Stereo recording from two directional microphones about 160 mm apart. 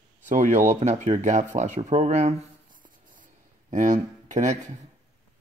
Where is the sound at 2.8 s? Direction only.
55° right (ahead or behind).